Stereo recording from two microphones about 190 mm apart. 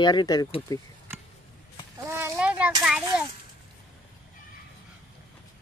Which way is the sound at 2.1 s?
15° right (ahead or behind).